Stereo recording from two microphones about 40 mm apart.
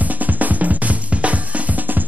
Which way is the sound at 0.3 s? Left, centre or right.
Right.